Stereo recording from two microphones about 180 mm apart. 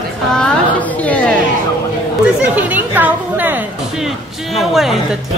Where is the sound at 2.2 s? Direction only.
5° right (ahead or behind).